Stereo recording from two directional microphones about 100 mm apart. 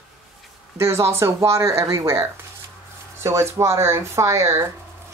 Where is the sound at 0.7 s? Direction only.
25° right (ahead or behind).